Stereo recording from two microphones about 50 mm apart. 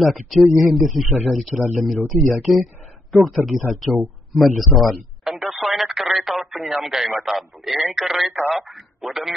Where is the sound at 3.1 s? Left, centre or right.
Centre.